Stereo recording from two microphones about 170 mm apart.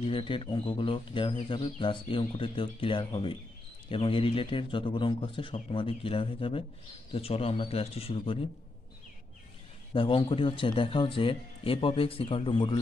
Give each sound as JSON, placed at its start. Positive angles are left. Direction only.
{"t": 0.0, "sound": "speech", "side_deg": 30}
{"t": 9.9, "sound": "speech", "side_deg": 30}